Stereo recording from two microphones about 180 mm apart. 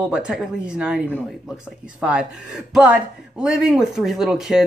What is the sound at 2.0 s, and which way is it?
Speech, 5° right (ahead or behind).